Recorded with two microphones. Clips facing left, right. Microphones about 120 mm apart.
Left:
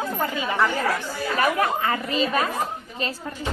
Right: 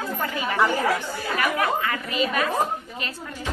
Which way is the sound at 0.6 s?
15° right (ahead or behind).